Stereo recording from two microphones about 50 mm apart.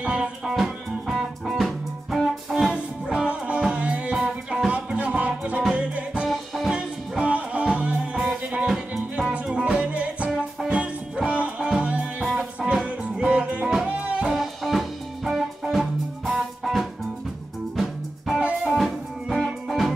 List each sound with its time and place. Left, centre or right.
0.0 s music: right
0.5 s music: centre
2.5 s music: right
4.1 s music: centre
6.2 s music: centre
6.7 s music: right
14.3 s music: centre